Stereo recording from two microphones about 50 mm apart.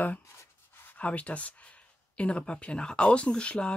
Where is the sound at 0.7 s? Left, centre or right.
Left.